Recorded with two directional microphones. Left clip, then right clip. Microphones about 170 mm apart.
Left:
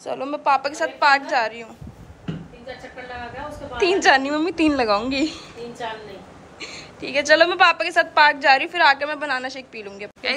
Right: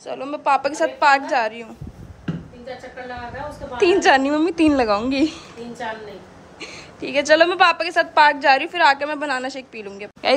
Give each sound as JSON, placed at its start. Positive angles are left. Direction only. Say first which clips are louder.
{"t": 0.0, "sound": "a woman's voice", "louder": "even", "side_deg": -10}
{"t": 3.8, "sound": "a woman's voice", "louder": "right 2 dB", "side_deg": -15}
{"t": 7.0, "sound": "a woman's voice", "louder": "right 1 dB", "side_deg": -15}